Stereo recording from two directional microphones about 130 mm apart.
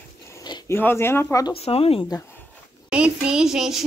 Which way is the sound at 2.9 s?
5° right (ahead or behind).